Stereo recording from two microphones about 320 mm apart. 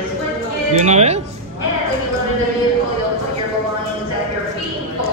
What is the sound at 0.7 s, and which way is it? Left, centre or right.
Speech, right.